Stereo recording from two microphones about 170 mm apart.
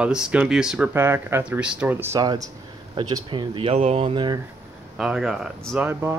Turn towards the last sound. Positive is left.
turn(degrees=-10)  # may be behind; listen again after turning